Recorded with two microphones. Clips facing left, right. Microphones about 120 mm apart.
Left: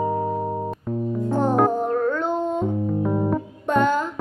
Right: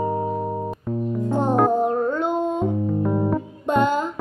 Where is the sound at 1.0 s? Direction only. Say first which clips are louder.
Even; 15° right (ahead or behind).